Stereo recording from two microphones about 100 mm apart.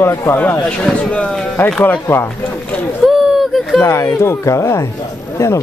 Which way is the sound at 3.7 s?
30° left (ahead or behind).